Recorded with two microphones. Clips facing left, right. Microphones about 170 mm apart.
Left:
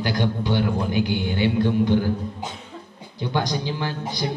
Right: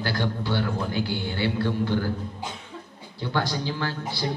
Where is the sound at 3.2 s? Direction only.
15° left (ahead or behind).